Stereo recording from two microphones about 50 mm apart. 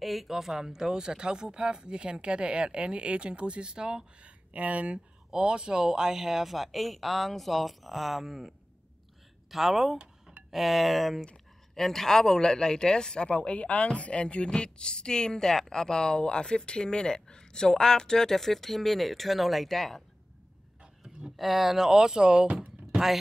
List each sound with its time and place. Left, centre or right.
0.0 s speech: centre
21.4 s speech: centre
22.0 s speech: centre